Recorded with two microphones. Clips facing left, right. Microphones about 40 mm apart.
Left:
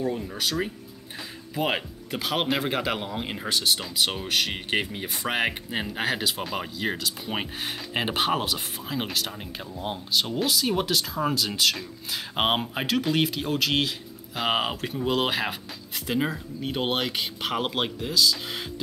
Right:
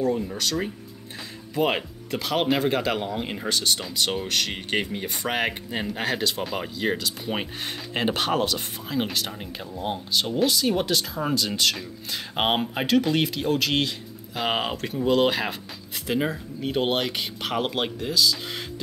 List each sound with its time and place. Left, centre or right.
0.1 s speech: centre